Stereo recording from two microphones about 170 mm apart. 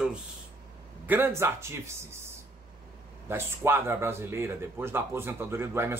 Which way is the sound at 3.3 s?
15° right (ahead or behind).